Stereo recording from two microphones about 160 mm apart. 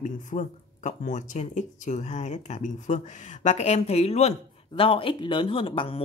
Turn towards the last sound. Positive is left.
turn(degrees=35)  # may be behind; listen again after turning